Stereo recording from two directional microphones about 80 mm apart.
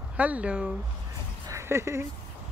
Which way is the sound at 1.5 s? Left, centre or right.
Right.